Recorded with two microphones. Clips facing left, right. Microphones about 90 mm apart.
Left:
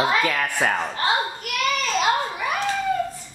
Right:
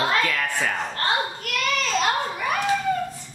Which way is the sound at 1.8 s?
5° left (ahead or behind).